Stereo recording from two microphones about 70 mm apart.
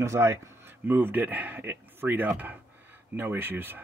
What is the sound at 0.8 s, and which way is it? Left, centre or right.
A man's voice, right.